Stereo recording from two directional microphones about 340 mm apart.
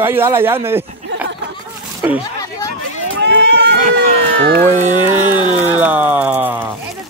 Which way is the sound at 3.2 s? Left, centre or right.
Right.